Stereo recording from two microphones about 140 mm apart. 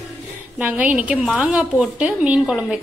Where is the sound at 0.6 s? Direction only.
10° right (ahead or behind).